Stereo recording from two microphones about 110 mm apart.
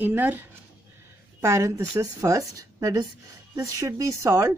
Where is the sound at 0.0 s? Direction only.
15° right (ahead or behind).